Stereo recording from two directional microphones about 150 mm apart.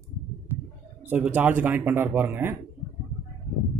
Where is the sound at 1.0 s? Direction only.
10° right (ahead or behind).